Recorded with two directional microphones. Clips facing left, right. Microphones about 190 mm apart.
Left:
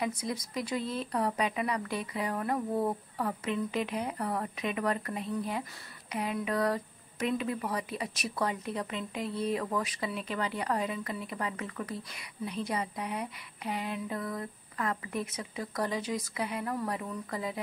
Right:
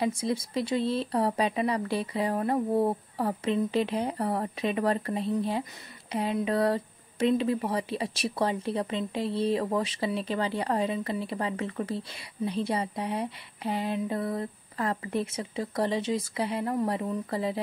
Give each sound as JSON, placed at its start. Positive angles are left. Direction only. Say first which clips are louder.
{"t": 0.0, "sound": "speech", "louder": "right 5 dB", "side_deg": -25}